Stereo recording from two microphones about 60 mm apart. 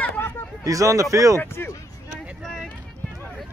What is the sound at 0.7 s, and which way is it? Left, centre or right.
Speech, right.